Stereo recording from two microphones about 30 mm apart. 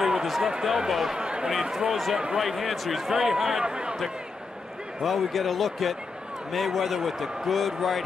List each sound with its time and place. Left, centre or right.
0.7 s speech: centre
1.1 s speech: right
1.5 s a man's voice: centre
3.6 s speech: right
5.0 s a man's voice: centre